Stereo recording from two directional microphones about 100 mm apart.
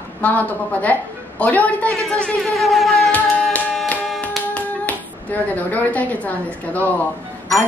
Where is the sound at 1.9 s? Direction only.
5° left (ahead or behind).